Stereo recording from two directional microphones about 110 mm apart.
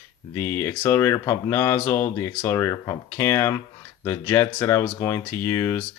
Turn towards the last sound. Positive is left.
turn(degrees=20)  # may be behind; listen again after turning